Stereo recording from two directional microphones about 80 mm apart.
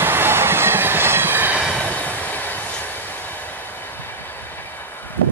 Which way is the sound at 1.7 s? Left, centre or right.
Centre.